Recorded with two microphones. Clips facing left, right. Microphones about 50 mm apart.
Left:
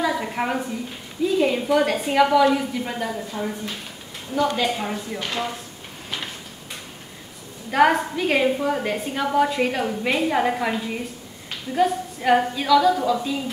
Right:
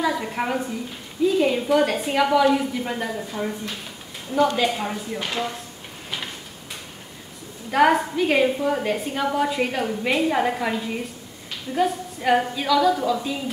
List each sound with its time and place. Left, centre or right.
0.0 s a woman's voice: centre
4.6 s a woman's voice: centre
7.7 s a woman's voice: centre